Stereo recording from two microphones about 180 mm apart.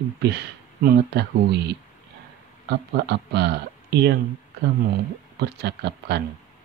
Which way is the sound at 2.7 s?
70° right (ahead or behind).